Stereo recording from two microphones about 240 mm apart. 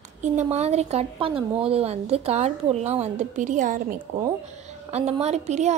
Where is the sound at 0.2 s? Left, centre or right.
Right.